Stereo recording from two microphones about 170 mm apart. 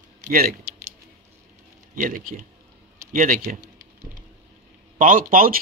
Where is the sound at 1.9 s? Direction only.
55° right (ahead or behind).